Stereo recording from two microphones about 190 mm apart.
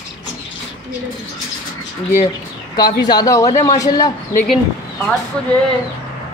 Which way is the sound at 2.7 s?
20° left (ahead or behind).